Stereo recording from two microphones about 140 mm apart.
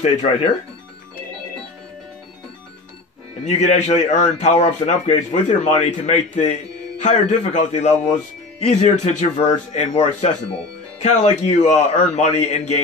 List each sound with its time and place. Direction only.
0.0 s a man's voice: 45° left (ahead or behind)
3.4 s a man's voice: 50° left (ahead or behind)
11.0 s a man's voice: 55° left (ahead or behind)